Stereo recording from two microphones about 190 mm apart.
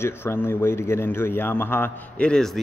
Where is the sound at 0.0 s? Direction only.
10° left (ahead or behind).